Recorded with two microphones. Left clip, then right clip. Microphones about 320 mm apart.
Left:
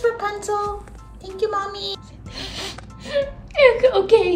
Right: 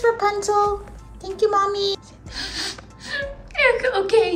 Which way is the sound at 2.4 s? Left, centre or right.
Left.